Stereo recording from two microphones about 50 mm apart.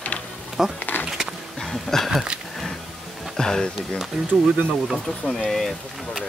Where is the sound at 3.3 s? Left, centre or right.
Centre.